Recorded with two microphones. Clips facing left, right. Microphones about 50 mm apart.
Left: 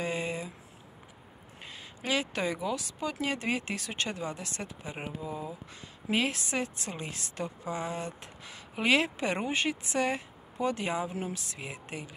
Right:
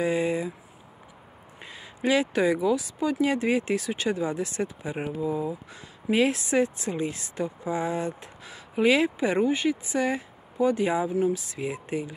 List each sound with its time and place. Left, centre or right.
0.0 s a sound: right
2.0 s speech: right
4.9 s speech: centre
6.2 s speech: right
8.8 s speech: centre
9.4 s speech: centre
11.1 s speech: centre
11.7 s speech: centre